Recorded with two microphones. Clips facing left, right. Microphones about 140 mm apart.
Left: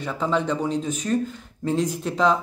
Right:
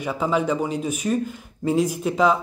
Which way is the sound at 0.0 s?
10° right (ahead or behind).